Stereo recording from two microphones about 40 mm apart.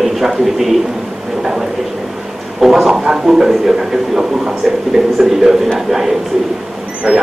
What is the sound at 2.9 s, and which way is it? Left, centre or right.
A man's voice, centre.